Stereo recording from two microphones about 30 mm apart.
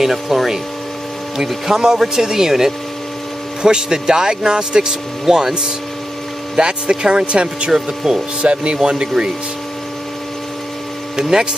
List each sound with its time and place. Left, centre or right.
0.0 s speech: centre
1.7 s speech: right
6.5 s speech: right
7.7 s speech: centre
8.4 s speech: right
8.8 s speech: right
11.1 s speech: centre